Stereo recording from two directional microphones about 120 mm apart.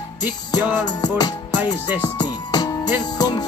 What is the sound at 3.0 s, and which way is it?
Speech, 35° left (ahead or behind).